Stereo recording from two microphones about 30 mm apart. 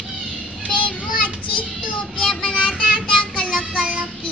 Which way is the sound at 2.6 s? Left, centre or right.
Left.